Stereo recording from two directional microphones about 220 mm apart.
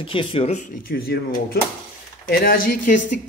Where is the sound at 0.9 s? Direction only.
45° left (ahead or behind).